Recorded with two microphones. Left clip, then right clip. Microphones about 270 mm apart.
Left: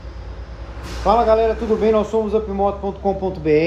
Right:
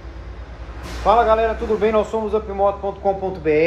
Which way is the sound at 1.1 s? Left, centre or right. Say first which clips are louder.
Left 1 dB; left.